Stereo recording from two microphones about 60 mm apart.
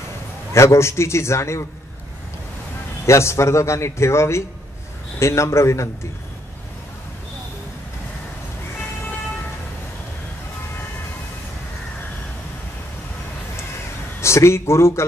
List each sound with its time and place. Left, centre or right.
0.5 s a man's voice: left
3.1 s a man's voice: left
14.2 s a man's voice: left